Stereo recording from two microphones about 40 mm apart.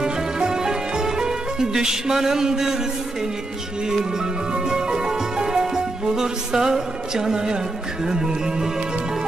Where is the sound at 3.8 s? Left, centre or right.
Centre.